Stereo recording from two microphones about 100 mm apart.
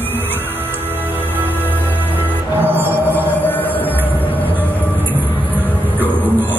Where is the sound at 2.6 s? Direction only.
20° right (ahead or behind).